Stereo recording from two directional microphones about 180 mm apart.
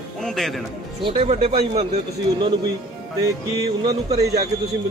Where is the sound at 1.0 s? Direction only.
30° right (ahead or behind).